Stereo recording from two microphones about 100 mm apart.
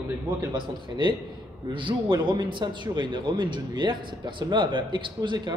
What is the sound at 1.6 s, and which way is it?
Speech, 50° right (ahead or behind).